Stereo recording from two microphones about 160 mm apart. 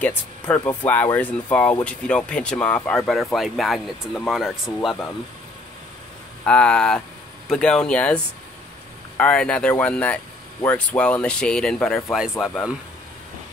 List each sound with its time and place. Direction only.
0.0 s speech: 10° left (ahead or behind)
6.4 s speech: 5° left (ahead or behind)